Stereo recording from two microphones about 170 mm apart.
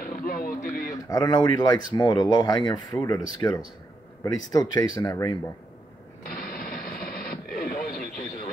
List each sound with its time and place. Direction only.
0.0 s a sound: 55° left (ahead or behind)
1.0 s speech: 25° left (ahead or behind)
6.2 s radio: 60° left (ahead or behind)